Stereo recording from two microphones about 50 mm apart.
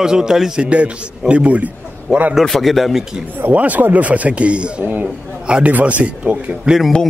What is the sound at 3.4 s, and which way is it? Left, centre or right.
Speech, right.